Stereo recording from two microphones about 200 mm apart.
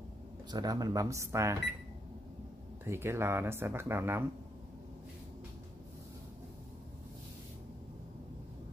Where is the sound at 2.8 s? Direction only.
10° right (ahead or behind).